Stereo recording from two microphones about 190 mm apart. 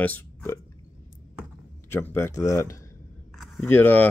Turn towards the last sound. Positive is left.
turn(degrees=10)  # may be behind; listen again after turning